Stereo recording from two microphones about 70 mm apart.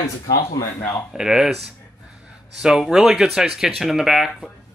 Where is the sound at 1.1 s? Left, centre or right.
Centre.